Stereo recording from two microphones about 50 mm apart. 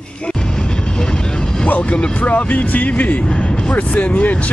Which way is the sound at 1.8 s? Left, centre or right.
Left.